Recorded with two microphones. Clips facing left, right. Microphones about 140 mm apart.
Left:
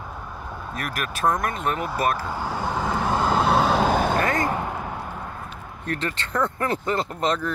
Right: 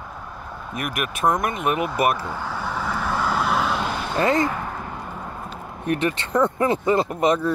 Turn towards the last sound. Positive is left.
turn(degrees=-15)  # may be behind; listen again after turning